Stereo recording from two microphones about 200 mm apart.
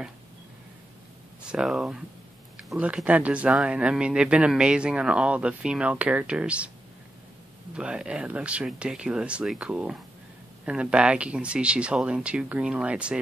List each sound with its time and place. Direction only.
1.4 s speech: 5° right (ahead or behind)
7.7 s speech: 5° right (ahead or behind)